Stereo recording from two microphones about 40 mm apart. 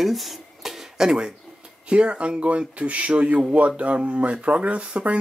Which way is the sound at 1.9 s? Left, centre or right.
Right.